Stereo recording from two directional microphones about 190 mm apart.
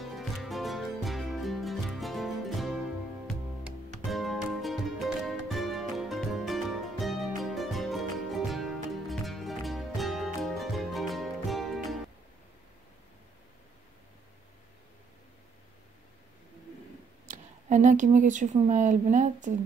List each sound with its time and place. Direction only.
0.0 s music: centre (ahead or behind)
17.3 s speech: 40° right (ahead or behind)